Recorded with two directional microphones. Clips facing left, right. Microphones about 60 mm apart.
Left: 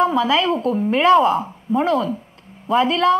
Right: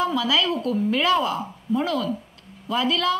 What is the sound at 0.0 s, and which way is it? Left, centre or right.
A woman's voice, left.